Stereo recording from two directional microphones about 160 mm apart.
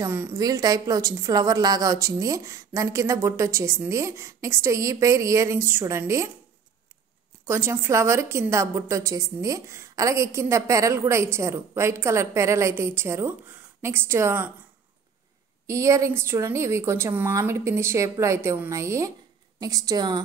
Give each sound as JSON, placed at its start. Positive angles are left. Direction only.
{"t": 0.0, "sound": "a woman's voice", "side_deg": -15}
{"t": 7.4, "sound": "a woman's voice", "side_deg": -15}
{"t": 15.6, "sound": "a woman's voice", "side_deg": -20}